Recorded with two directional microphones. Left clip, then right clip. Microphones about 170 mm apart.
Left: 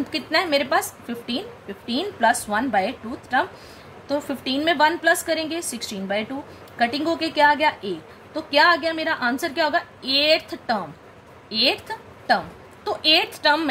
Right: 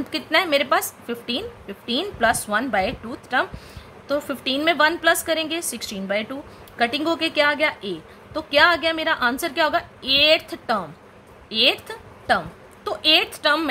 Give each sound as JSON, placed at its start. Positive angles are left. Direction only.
{"t": 0.1, "sound": "a woman's voice", "side_deg": -25}